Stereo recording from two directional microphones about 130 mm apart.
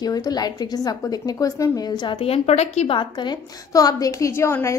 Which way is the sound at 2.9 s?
35° left (ahead or behind).